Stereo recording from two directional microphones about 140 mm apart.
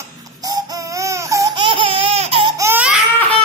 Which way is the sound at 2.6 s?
10° right (ahead or behind).